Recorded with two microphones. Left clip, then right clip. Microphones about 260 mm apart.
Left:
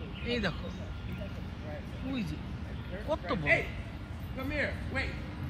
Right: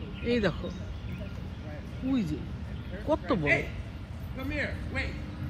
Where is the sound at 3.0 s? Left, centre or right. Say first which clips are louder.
Right 5 dB; centre.